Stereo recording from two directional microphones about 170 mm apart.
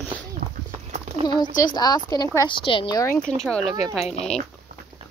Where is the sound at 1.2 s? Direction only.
25° left (ahead or behind).